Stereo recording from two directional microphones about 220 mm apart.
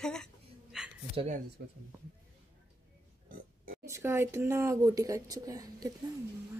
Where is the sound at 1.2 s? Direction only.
35° right (ahead or behind).